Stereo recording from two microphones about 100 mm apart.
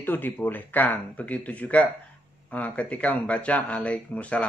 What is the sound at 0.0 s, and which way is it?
Speech, 20° left (ahead or behind).